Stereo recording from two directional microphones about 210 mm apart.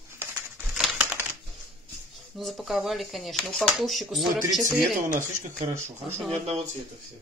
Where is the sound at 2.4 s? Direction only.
Centre (ahead or behind).